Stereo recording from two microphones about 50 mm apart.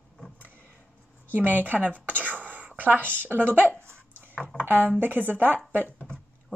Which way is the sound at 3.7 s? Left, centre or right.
Right.